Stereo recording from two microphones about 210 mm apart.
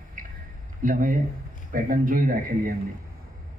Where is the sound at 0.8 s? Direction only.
40° right (ahead or behind).